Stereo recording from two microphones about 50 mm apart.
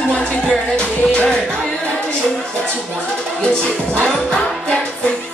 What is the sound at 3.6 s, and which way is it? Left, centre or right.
Music, centre.